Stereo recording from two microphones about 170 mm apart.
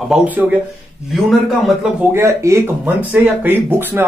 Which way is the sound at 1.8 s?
10° right (ahead or behind).